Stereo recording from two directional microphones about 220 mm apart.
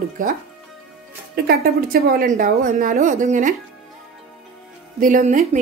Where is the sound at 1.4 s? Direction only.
40° right (ahead or behind).